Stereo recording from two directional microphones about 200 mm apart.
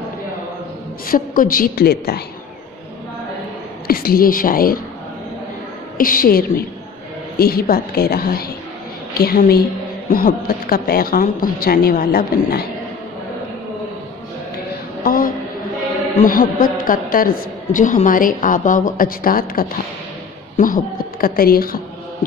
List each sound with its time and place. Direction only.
1.0 s a woman's voice: 45° left (ahead or behind)
3.8 s a woman's voice: 50° left (ahead or behind)
5.9 s a woman's voice: 45° left (ahead or behind)
15.0 s a sound: 45° left (ahead or behind)
16.2 s a woman's voice: 45° left (ahead or behind)